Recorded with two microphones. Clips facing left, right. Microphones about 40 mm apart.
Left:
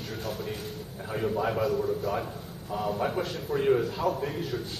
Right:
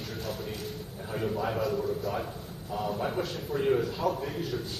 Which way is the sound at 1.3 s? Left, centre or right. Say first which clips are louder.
Left 4 dB; centre.